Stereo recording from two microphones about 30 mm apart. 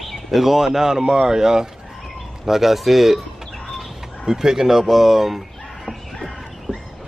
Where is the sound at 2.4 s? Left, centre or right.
Centre.